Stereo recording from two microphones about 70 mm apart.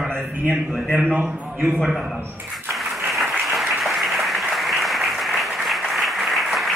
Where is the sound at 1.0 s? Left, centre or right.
Right.